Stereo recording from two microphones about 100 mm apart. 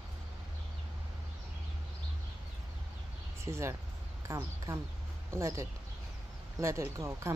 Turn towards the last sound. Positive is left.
turn(degrees=-30)  # may be behind; listen again after turning